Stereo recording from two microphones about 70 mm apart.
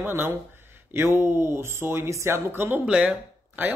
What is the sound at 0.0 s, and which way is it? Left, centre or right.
Speech, right.